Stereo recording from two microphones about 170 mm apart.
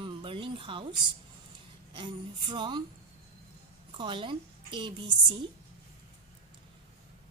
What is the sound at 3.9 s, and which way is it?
A woman's voice, 30° right (ahead or behind).